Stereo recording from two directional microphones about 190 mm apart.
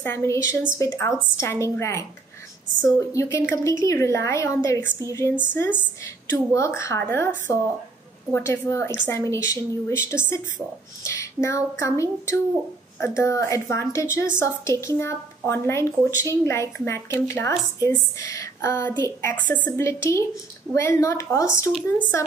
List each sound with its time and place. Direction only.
0.0 s a woman's voice: 15° left (ahead or behind)